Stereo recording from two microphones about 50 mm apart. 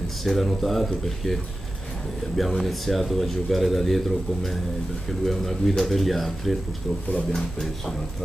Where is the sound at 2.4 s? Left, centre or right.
Centre.